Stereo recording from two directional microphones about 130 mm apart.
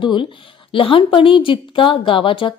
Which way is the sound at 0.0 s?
40° left (ahead or behind).